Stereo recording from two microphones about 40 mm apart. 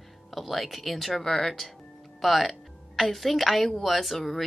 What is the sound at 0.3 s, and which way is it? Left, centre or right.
A woman's voice, centre.